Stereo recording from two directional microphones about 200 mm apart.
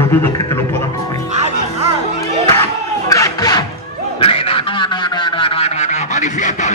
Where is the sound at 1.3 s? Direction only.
35° right (ahead or behind).